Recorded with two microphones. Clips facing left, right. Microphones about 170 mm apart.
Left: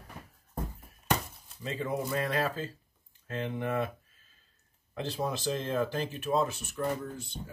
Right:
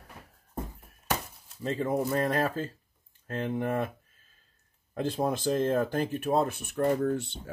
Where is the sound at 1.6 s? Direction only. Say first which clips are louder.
Right 5 dB; 50° right (ahead or behind).